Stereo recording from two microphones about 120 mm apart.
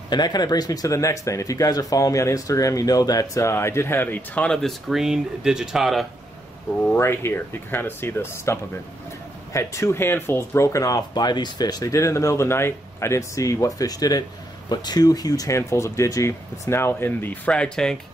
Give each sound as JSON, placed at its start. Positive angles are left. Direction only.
{"t": 0.1, "sound": "speech", "side_deg": 35}
{"t": 6.8, "sound": "speech", "side_deg": 15}